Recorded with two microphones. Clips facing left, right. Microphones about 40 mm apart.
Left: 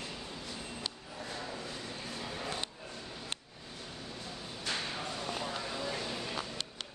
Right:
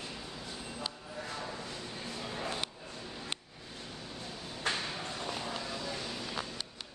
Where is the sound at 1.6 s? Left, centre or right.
Centre.